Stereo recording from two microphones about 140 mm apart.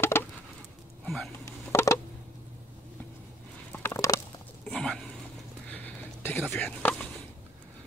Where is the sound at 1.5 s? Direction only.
20° left (ahead or behind).